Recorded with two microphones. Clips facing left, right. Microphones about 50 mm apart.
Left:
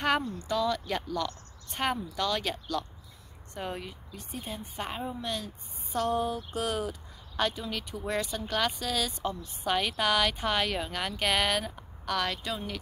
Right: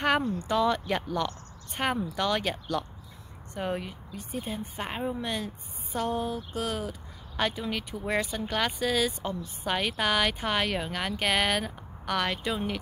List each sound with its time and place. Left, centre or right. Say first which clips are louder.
0.2 s speech: right 4 dB; right
0.8 s speech: right 3 dB; centre
2.0 s speech: right 3 dB; right; by 4.8 s centre
4.8 s speech: right 3 dB; right
5.9 s a sound: left 1 dB; centre
7.3 s speech: right 1 dB; centre